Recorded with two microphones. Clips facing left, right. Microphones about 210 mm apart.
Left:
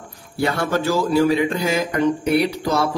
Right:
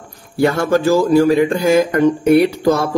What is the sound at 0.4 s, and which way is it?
Speech, 50° right (ahead or behind).